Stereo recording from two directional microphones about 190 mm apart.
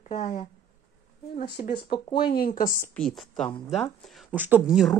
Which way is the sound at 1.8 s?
25° left (ahead or behind).